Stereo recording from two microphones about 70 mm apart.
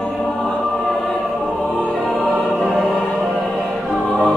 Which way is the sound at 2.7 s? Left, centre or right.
Centre.